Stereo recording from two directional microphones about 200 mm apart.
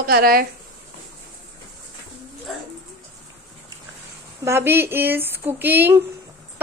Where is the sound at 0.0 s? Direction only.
50° right (ahead or behind).